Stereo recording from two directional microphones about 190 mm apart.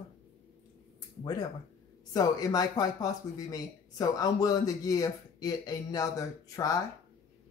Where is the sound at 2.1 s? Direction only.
20° left (ahead or behind).